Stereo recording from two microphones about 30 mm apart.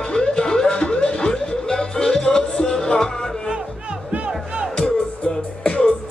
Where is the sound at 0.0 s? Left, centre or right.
Left.